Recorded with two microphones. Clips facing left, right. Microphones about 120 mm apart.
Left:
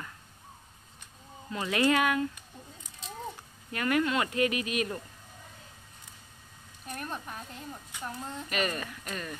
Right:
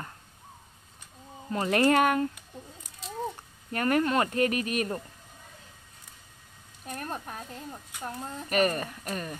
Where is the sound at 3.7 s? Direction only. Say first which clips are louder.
Right 3 dB; 40° right (ahead or behind).